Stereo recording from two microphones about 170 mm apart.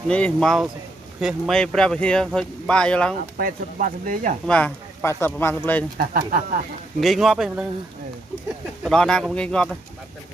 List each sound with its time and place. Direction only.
0.1 s speech: 5° left (ahead or behind)
3.3 s speech: 55° right (ahead or behind)
4.5 s speech: 10° left (ahead or behind)
5.9 s speech: 55° right (ahead or behind)
7.0 s speech: centre (ahead or behind)
8.8 s speech: 5° left (ahead or behind)